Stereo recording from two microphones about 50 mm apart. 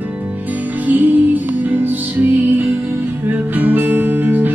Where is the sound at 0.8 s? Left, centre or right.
Right.